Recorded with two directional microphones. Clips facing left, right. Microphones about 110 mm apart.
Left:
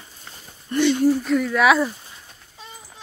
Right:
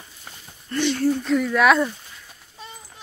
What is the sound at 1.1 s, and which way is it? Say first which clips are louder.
Speech: even; centre (ahead or behind).